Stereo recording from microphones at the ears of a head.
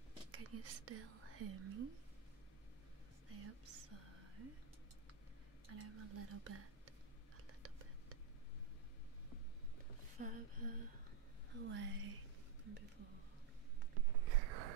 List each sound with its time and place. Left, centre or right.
0.3 s whispering: right
3.3 s whispering: right
5.7 s speech: right
10.1 s speech: right
12.6 s a sound: right